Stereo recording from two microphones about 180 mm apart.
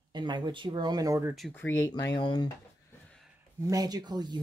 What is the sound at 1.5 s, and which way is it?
Speech, 10° left (ahead or behind).